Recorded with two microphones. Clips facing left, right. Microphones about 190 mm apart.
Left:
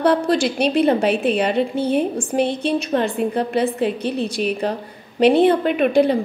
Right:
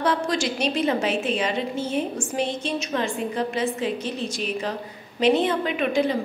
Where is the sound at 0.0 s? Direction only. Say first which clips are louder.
Left 7 dB; 60° left (ahead or behind).